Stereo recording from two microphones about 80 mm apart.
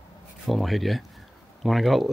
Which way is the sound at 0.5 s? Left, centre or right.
Centre.